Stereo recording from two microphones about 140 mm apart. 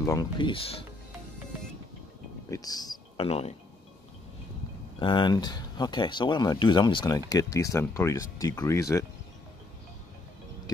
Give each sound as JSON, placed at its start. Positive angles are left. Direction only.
{"t": 0.0, "sound": "speech", "side_deg": 25}
{"t": 0.4, "sound": "speech", "side_deg": 40}
{"t": 2.5, "sound": "speech", "side_deg": 25}
{"t": 3.2, "sound": "speech", "side_deg": 45}
{"t": 4.9, "sound": "speech", "side_deg": 35}